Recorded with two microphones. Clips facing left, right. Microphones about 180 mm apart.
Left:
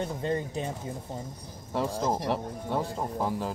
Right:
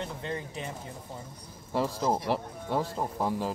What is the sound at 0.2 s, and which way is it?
Speech, 35° left (ahead or behind).